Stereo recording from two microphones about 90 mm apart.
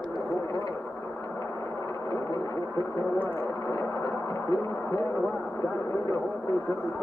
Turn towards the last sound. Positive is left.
turn(degrees=35)  # may be behind; listen again after turning